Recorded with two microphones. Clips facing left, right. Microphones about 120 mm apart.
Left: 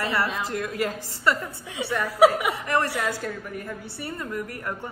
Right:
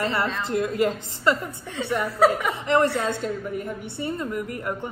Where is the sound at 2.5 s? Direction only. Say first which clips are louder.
Right 4 dB; 25° right (ahead or behind).